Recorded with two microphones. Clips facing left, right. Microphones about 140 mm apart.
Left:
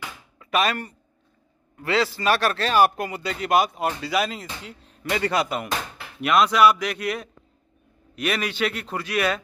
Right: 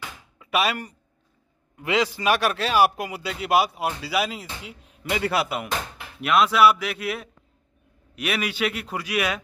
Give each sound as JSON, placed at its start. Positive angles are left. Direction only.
{"t": 0.4, "sound": "a man's voice", "side_deg": -10}